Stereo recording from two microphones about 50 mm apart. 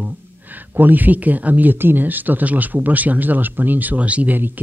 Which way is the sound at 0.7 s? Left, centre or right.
Right.